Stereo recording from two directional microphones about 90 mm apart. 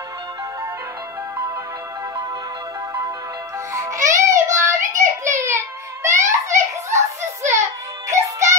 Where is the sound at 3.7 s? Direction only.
35° right (ahead or behind).